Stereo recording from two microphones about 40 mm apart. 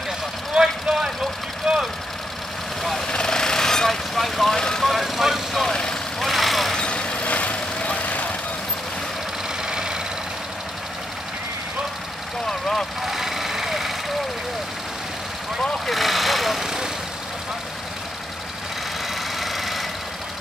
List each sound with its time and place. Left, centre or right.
0.6 s vehicle: centre
3.1 s vehicle: centre
4.6 s vehicle: centre
4.8 s vehicle: centre
5.6 s vehicle: centre
6.1 s vehicle: centre
6.9 s vehicle: left
7.2 s vehicle: left
9.7 s vehicle: centre
12.4 s vehicle: centre
13.0 s vehicle: centre
15.9 s vehicle: centre
16.6 s vehicle: centre
19.4 s engine: centre